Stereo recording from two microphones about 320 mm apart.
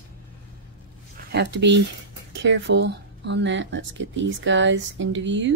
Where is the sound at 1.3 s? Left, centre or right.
Right.